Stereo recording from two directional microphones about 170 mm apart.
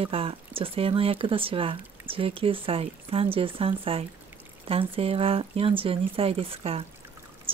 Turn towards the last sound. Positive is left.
turn(degrees=-35)  # may be behind; listen again after turning